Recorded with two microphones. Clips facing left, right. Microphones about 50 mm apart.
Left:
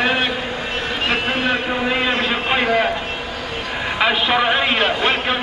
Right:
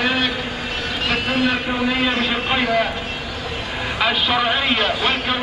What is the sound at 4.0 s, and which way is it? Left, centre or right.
A man's voice, left.